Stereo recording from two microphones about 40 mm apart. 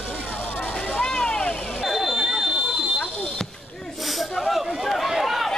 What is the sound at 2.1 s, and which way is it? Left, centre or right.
Buzzer, centre.